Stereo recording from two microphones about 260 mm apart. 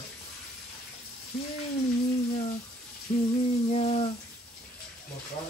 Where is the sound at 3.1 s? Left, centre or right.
Left.